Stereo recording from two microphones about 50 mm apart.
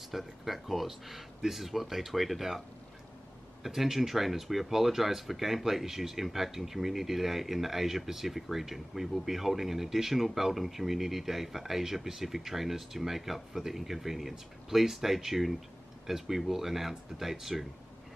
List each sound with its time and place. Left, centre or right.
0.1 s speech: centre
3.6 s speech: centre